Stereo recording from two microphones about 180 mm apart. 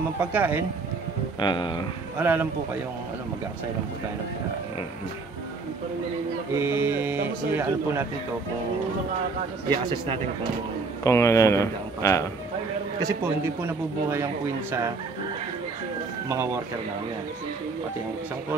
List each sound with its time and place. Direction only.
0.2 s speech: 10° right (ahead or behind)
1.4 s speech: 25° left (ahead or behind)
2.1 s speech: 10° right (ahead or behind)
6.5 s speech: 10° right (ahead or behind)
11.1 s speech: 15° left (ahead or behind)
13.0 s speech: 15° right (ahead or behind)